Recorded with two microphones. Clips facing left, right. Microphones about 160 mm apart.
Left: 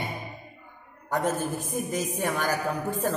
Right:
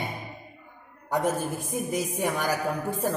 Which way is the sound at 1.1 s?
10° right (ahead or behind).